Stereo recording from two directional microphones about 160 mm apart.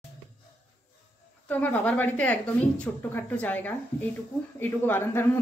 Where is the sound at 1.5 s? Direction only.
10° left (ahead or behind).